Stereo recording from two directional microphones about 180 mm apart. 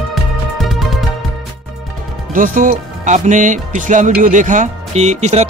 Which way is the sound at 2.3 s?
45° right (ahead or behind).